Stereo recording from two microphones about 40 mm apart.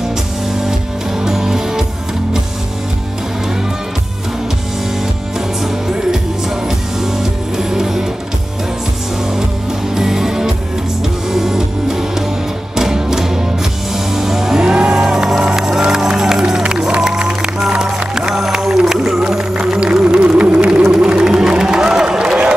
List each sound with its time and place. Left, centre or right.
1.2 s music: centre
7.5 s music: centre
9.9 s music: centre
14.6 s music: right
22.0 s a sound: right